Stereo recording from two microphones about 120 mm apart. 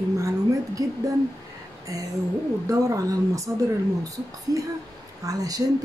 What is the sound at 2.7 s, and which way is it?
Speech, 25° right (ahead or behind).